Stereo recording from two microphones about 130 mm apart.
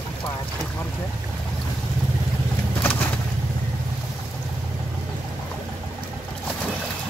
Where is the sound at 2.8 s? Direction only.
10° left (ahead or behind).